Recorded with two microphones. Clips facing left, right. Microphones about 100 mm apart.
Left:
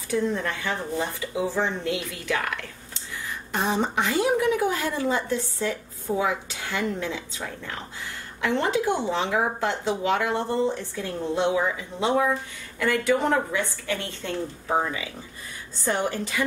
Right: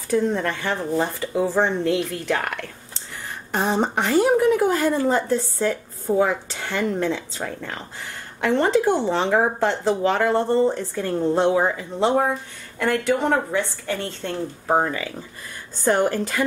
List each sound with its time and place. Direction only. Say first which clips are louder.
0.3 s a woman's voice: right 4 dB; 60° right (ahead or behind)